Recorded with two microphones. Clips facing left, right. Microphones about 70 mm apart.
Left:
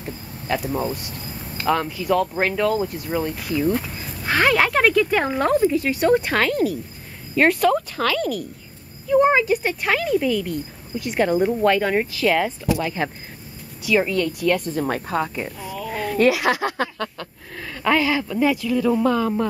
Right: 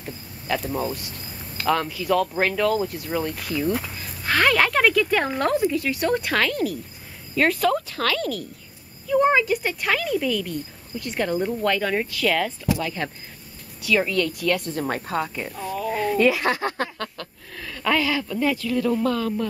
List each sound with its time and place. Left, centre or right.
0.0 s insect: centre
1.6 s speech: centre
5.6 s speech: left
14.6 s speech: centre
15.9 s a sound: centre
16.4 s speech: centre